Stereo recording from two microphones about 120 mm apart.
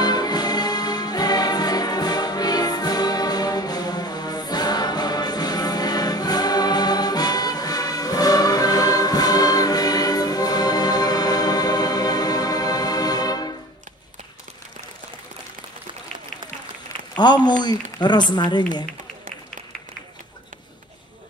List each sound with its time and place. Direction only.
0.0 s music: 35° left (ahead or behind)
17.2 s speech: 35° left (ahead or behind)